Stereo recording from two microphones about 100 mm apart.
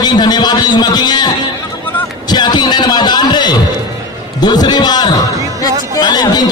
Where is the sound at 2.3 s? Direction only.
45° left (ahead or behind).